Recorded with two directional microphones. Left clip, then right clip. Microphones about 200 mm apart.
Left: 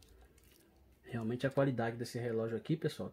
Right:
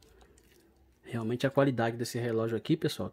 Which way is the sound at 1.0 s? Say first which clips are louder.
Right 6 dB; 35° right (ahead or behind).